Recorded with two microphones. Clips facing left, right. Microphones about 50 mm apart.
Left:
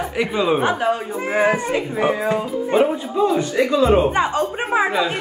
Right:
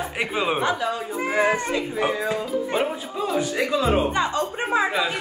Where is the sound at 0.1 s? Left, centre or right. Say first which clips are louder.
Left 5 dB; centre.